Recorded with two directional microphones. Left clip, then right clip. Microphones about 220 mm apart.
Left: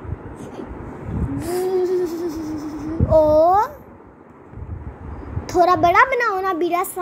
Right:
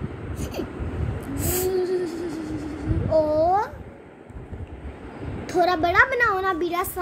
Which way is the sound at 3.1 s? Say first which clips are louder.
Left 6 dB; 20° left (ahead or behind).